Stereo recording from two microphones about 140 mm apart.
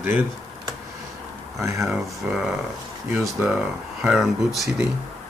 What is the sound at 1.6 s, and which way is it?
Speech, 20° right (ahead or behind).